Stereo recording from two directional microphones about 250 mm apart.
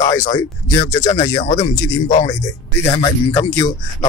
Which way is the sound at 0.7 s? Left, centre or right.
Centre.